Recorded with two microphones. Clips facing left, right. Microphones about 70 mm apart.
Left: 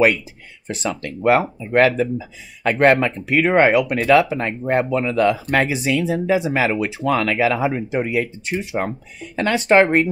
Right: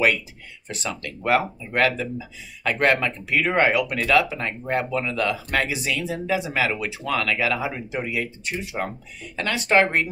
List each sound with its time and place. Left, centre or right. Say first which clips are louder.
0.7 s speech: left 6 dB; left